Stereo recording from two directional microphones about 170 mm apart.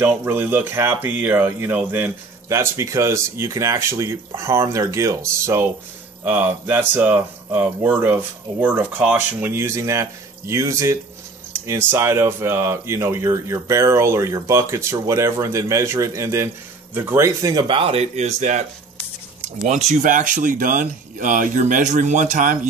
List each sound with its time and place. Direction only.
0.0 s speech: 10° right (ahead or behind)
17.6 s a man's voice: 35° right (ahead or behind)
19.7 s speech: 45° right (ahead or behind)